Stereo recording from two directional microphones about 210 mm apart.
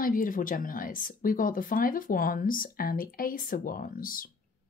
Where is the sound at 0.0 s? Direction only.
40° left (ahead or behind).